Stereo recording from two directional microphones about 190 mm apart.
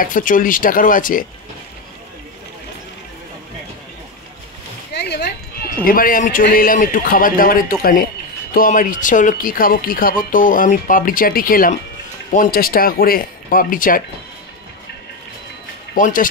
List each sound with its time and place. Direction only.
0.0 s speech: 45° left (ahead or behind)
4.9 s a sound: 60° left (ahead or behind)
5.9 s speech: 50° left (ahead or behind)
15.9 s speech: 45° left (ahead or behind)